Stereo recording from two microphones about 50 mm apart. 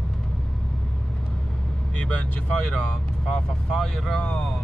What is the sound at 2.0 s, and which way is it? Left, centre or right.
Speech, left.